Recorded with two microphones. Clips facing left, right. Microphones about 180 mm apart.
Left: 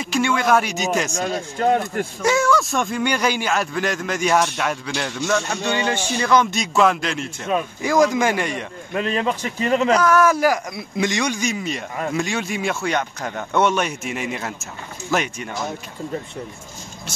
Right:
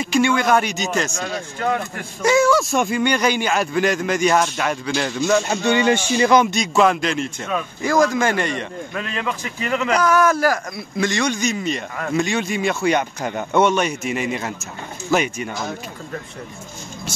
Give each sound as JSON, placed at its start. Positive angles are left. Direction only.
{"t": 0.0, "sound": "speech", "side_deg": 0}
{"t": 1.2, "sound": "a man's voice", "side_deg": 40}
{"t": 2.2, "sound": "speech", "side_deg": 0}
{"t": 5.5, "sound": "speech", "side_deg": -15}
{"t": 6.5, "sound": "speech", "side_deg": 5}
{"t": 7.8, "sound": "speech", "side_deg": 15}
{"t": 8.9, "sound": "a man's voice", "side_deg": 30}
{"t": 9.9, "sound": "speech", "side_deg": 0}
{"t": 10.3, "sound": "speech", "side_deg": 15}